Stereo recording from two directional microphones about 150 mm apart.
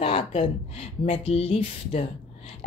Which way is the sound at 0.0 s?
40° left (ahead or behind).